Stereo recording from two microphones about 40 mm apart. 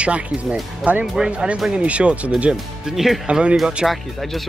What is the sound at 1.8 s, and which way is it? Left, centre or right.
Speech, right.